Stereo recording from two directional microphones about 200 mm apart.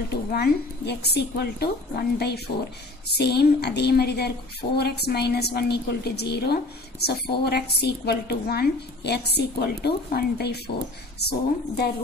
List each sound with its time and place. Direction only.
0.1 s a woman's voice: 50° left (ahead or behind)